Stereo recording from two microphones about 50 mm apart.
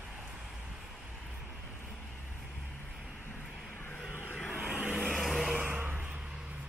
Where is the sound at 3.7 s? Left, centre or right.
Left.